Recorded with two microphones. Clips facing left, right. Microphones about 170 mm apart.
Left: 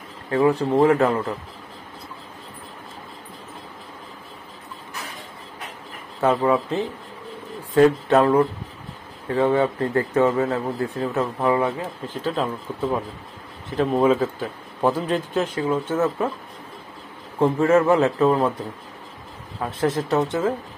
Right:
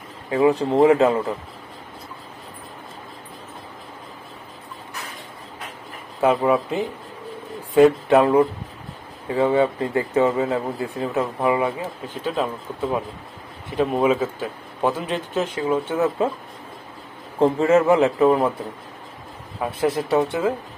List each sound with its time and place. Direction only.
0.3 s a man's voice: 15° right (ahead or behind)
6.2 s a man's voice: 15° right (ahead or behind)
17.4 s a man's voice: 20° right (ahead or behind)
19.6 s a man's voice: 10° right (ahead or behind)